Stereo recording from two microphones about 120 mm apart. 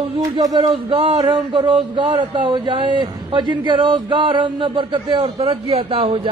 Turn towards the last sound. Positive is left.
turn(degrees=-45)  # may be behind; listen again after turning